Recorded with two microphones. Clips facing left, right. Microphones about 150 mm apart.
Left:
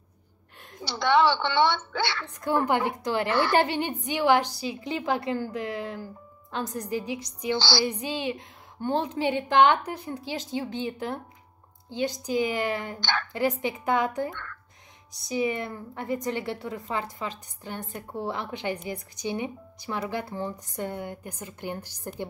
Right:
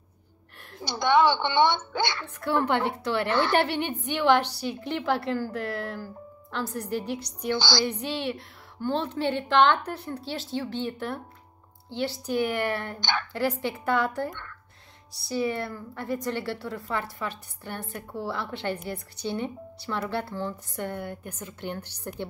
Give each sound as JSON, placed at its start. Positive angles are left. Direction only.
{"t": 0.8, "sound": "a woman's voice", "side_deg": -15}
{"t": 2.2, "sound": "a woman's voice", "side_deg": 15}
{"t": 4.5, "sound": "a woman's voice", "side_deg": -70}
{"t": 5.0, "sound": "a woman's voice", "side_deg": 15}
{"t": 7.5, "sound": "a woman's voice", "side_deg": -15}
{"t": 7.8, "sound": "a woman's voice", "side_deg": 10}